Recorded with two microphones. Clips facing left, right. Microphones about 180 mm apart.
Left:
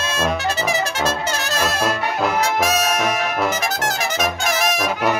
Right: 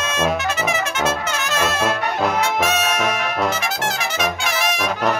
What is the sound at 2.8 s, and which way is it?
Brass instrument, 40° left (ahead or behind).